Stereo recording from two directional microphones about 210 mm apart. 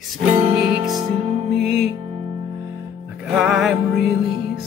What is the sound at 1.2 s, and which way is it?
Music, 30° right (ahead or behind).